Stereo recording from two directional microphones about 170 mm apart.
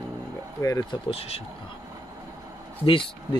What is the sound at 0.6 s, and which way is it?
Speech, 20° left (ahead or behind).